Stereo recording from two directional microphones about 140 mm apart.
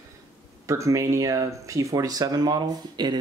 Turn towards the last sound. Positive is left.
turn(degrees=-30)  # may be behind; listen again after turning